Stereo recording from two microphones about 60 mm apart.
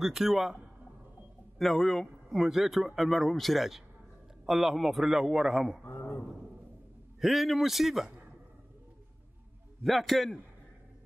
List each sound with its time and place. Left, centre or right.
0.0 s a man's voice: centre
1.6 s speech: centre
5.9 s a man's voice: left
7.2 s speech: centre
9.8 s speech: centre